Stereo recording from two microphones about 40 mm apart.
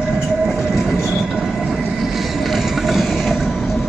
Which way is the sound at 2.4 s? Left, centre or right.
Centre.